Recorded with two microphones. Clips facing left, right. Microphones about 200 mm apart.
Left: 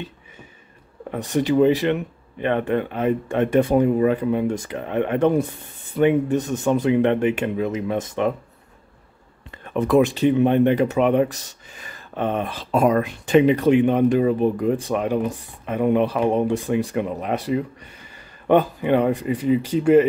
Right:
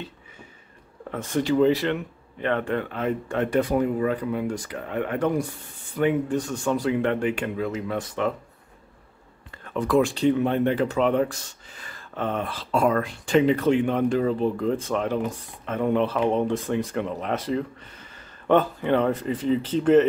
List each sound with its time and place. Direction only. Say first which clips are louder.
1.3 s speech: left 3 dB; 15° left (ahead or behind)
9.7 s speech: left 4 dB; 20° left (ahead or behind)